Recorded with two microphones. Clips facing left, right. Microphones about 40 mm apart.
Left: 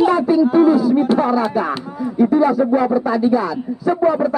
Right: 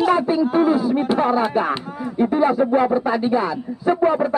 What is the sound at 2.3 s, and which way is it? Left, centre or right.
A man's voice, right.